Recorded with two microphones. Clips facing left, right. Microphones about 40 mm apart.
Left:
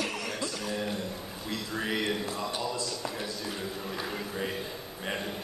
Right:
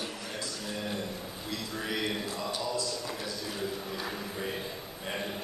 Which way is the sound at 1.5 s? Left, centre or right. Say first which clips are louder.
Left 3 dB; left.